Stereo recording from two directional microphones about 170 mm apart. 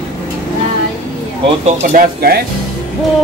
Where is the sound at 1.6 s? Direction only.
60° right (ahead or behind).